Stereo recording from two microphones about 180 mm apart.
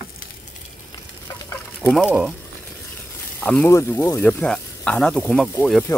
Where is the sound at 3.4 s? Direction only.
10° left (ahead or behind).